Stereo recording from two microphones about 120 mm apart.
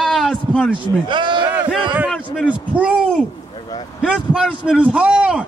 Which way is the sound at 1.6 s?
10° right (ahead or behind).